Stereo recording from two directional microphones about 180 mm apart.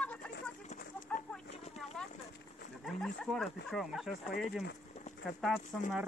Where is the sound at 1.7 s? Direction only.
5° left (ahead or behind).